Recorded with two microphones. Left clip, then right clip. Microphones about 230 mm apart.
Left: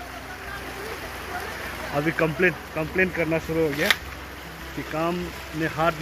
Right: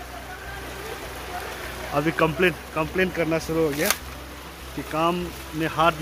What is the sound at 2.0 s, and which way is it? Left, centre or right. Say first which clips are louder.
Speech: right 1 dB; centre.